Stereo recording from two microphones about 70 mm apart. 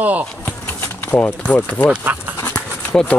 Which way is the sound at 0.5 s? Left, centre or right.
Left.